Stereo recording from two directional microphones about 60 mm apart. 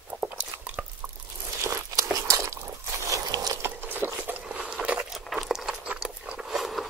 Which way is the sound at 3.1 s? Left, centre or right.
Right.